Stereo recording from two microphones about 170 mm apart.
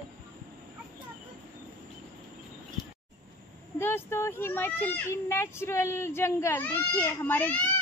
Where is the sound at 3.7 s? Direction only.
15° left (ahead or behind).